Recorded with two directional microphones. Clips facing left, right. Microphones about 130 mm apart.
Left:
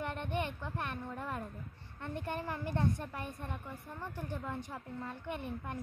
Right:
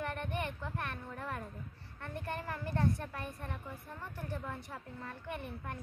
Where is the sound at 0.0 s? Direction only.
20° left (ahead or behind).